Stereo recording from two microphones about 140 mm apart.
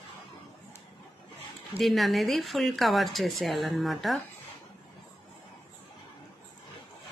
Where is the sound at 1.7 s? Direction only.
Centre (ahead or behind).